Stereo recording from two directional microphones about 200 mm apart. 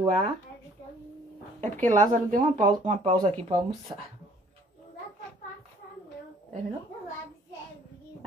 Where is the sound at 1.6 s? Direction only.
40° right (ahead or behind).